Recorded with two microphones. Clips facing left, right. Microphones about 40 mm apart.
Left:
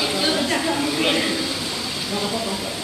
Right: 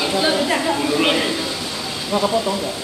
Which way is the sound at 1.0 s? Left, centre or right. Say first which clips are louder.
Right 2 dB; centre.